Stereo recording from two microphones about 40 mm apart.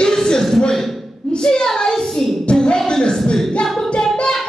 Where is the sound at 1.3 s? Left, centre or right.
Left.